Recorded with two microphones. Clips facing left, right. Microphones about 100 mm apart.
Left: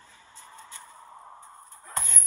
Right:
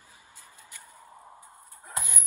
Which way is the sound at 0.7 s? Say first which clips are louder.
Left 4 dB; 25° left (ahead or behind).